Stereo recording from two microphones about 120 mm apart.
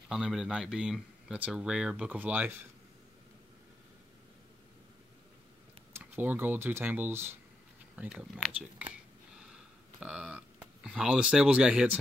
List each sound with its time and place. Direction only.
0.1 s speech: 5° right (ahead or behind)
5.9 s speech: 15° right (ahead or behind)
9.4 s a sound: 5° right (ahead or behind)
10.8 s speech: 10° right (ahead or behind)